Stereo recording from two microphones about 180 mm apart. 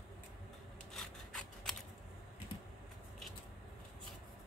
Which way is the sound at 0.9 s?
Centre (ahead or behind).